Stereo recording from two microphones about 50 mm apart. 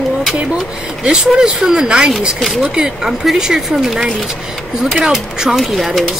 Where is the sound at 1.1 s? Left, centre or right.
Centre.